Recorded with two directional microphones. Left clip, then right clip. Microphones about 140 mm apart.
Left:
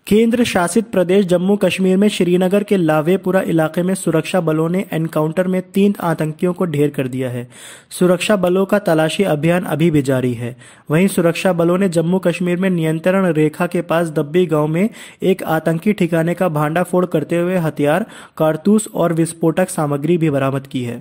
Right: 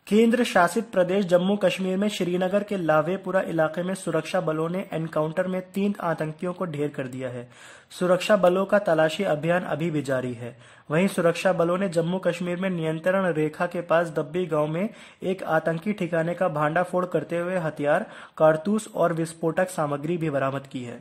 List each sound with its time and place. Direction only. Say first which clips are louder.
0.1 s speech: left 6 dB; 35° left (ahead or behind)